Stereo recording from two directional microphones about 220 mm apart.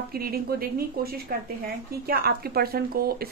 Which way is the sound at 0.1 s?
45° right (ahead or behind).